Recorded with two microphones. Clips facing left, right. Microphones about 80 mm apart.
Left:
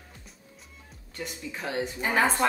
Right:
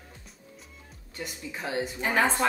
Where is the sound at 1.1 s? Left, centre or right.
Centre.